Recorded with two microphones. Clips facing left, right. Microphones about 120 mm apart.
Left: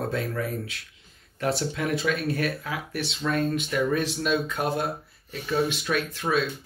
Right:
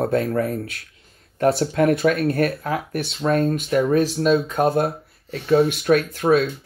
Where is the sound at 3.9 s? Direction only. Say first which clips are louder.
Right 8 dB; 35° right (ahead or behind).